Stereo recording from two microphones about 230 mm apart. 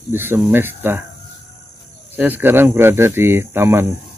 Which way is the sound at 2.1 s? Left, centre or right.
Centre.